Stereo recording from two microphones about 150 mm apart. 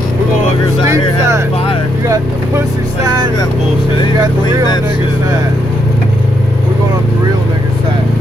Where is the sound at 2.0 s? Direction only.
20° right (ahead or behind).